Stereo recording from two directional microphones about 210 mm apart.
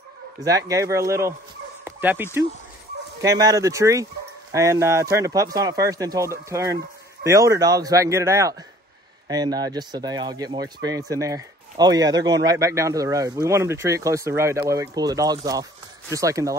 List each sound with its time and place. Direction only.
0.4 s speech: 15° right (ahead or behind)